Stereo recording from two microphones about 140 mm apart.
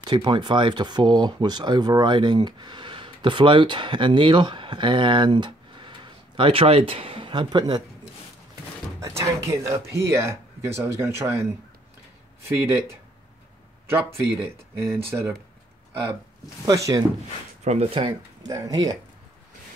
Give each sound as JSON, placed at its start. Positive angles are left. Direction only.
{"t": 0.0, "sound": "speech", "side_deg": -35}
{"t": 9.0, "sound": "speech", "side_deg": -20}
{"t": 12.4, "sound": "speech", "side_deg": -20}
{"t": 14.8, "sound": "speech", "side_deg": -20}
{"t": 16.6, "sound": "speech", "side_deg": -25}
{"t": 17.6, "sound": "speech", "side_deg": -45}
{"t": 18.5, "sound": "speech", "side_deg": -25}